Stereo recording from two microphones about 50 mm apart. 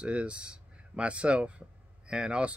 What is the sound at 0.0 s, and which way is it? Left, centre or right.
Speech, right.